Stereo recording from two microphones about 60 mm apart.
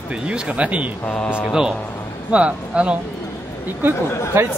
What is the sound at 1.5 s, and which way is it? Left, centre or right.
Speech, centre.